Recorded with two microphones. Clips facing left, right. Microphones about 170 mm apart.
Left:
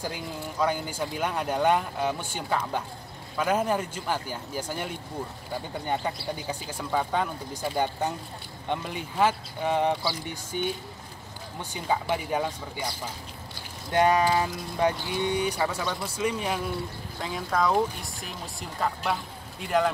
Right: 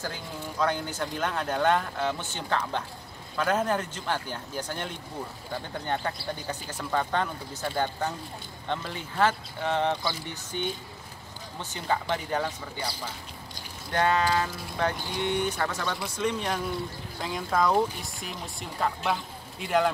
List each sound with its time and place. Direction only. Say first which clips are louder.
0.0 s speech: left 2 dB; 10° left (ahead or behind)
11.7 s speech: left 1 dB; 10° left (ahead or behind)
13.9 s speech: left 3 dB; 15° left (ahead or behind)